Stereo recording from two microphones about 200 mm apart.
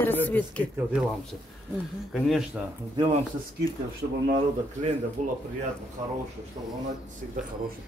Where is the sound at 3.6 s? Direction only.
20° left (ahead or behind).